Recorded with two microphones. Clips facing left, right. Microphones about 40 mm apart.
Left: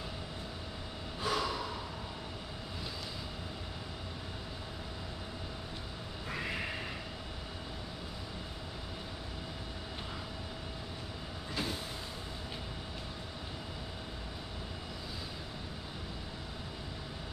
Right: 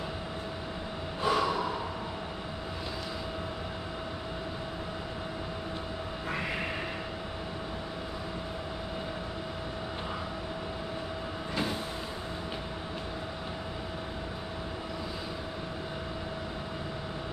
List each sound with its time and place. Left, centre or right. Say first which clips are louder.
1.2 s snort: right 7 dB; right